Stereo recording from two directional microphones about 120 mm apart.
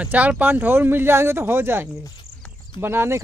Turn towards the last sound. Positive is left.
turn(degrees=-20)  # may be behind; listen again after turning